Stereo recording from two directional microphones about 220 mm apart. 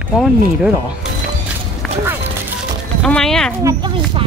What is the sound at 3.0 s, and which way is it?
Speech, 5° left (ahead or behind).